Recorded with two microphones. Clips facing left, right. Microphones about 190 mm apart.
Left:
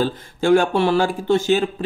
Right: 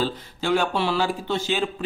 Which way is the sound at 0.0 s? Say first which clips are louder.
Left 6 dB; 50° left (ahead or behind).